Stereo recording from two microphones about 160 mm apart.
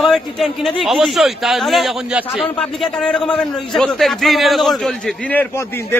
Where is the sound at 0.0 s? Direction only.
Centre (ahead or behind).